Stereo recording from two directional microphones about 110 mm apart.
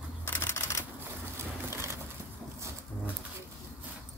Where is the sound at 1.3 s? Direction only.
25° right (ahead or behind).